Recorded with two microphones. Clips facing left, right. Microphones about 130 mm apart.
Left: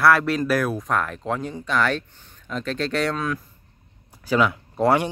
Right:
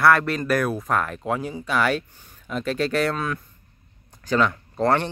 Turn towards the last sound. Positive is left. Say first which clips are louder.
# left 2 dB
turn(degrees=10)  # may be behind; listen again after turning